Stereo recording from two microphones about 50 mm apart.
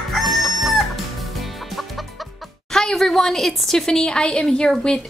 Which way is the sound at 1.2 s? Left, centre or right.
Centre.